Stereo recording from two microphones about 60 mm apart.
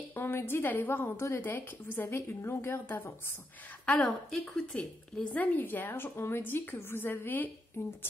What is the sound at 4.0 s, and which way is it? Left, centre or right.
A woman's voice, centre.